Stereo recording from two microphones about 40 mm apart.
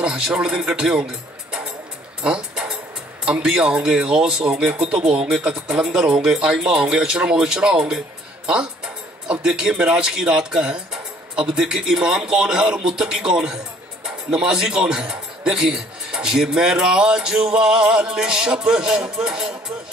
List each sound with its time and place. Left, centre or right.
0.0 s a man's voice: right
2.5 s a sound: centre
3.4 s a man's voice: centre
17.5 s music: right